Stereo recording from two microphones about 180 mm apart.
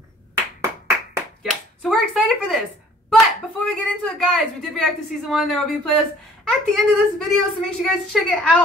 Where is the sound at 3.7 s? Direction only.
5° left (ahead or behind).